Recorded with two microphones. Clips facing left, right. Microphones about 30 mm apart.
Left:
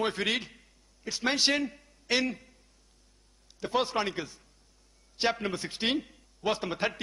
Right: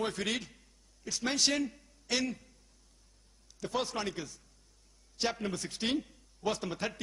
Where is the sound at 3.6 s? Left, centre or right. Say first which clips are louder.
Left 5 dB; left.